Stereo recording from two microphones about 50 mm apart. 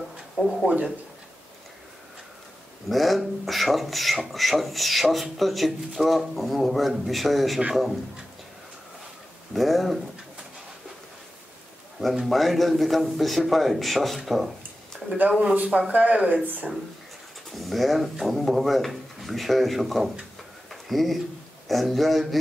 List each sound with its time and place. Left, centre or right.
0.7 s speech: right
2.9 s speech: centre
9.5 s speech: centre
12.0 s speech: centre
15.1 s speech: right
17.5 s speech: centre
20.7 s a sound: centre
21.6 s speech: centre